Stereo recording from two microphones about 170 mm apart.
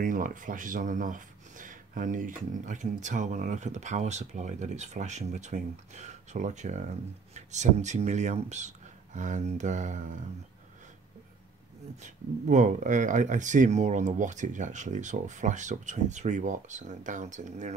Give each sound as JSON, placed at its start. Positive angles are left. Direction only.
{"t": 0.0, "sound": "speech", "side_deg": -50}
{"t": 12.0, "sound": "speech", "side_deg": -45}